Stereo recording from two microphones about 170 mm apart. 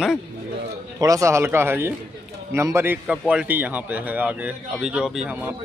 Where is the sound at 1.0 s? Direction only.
20° right (ahead or behind).